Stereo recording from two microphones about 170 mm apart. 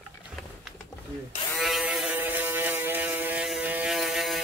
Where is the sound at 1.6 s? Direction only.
Centre (ahead or behind).